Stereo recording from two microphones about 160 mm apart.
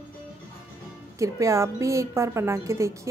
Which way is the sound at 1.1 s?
20° right (ahead or behind).